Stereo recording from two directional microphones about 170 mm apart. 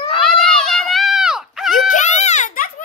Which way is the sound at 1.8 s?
45° left (ahead or behind).